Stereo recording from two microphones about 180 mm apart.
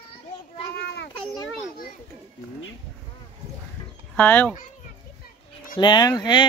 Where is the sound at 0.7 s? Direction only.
65° left (ahead or behind).